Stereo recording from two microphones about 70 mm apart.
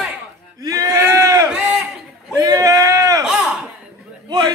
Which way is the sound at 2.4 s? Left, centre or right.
Right.